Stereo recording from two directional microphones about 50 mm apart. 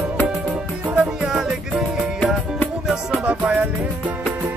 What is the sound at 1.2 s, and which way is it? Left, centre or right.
Music, centre.